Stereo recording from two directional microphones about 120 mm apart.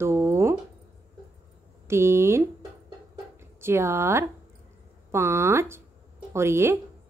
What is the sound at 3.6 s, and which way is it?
A woman's voice, 20° right (ahead or behind).